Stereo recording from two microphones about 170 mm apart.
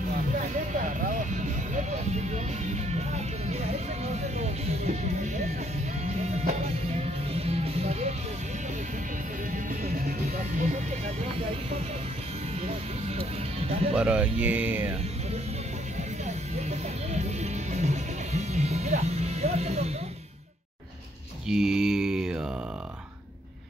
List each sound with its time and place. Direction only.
0.8 s vehicle: 45° right (ahead or behind)
2.3 s music: 40° right (ahead or behind)
9.5 s music: 55° right (ahead or behind)
11.2 s music: 35° right (ahead or behind)
13.9 s speech: 5° right (ahead or behind)
17.1 s music: 40° right (ahead or behind)
21.5 s mantra: 5° right (ahead or behind)